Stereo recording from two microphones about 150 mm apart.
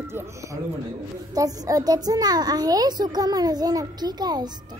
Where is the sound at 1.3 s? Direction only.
25° right (ahead or behind).